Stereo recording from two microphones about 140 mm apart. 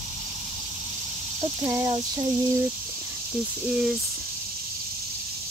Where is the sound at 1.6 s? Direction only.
25° right (ahead or behind).